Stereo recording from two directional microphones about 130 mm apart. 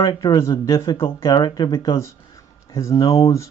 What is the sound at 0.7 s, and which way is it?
Speech, 25° left (ahead or behind).